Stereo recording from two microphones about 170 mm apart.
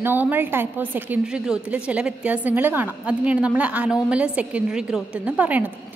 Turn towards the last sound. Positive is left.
turn(degrees=-10)  # may be behind; listen again after turning